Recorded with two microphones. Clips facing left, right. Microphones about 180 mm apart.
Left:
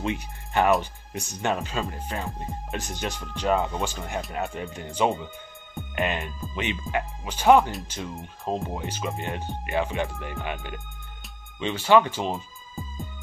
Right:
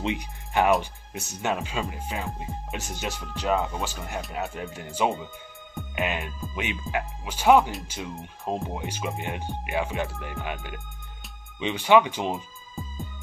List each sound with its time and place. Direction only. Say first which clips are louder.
0.0 s speech: even; 15° right (ahead or behind)
0.7 s speech: even; centre (ahead or behind)
11.6 s speech: even; 15° right (ahead or behind)
12.8 s music: even; centre (ahead or behind)